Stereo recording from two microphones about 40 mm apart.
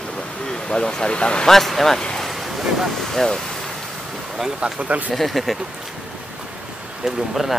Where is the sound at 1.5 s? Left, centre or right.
Centre.